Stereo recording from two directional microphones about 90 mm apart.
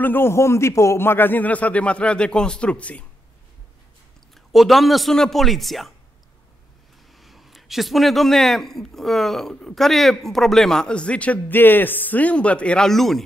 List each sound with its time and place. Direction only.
0.0 s a man's voice: 25° left (ahead or behind)
4.5 s speech: centre (ahead or behind)
7.2 s speech: centre (ahead or behind)